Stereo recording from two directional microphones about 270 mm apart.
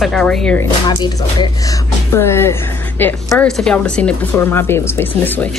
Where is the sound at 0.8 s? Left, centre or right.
Centre.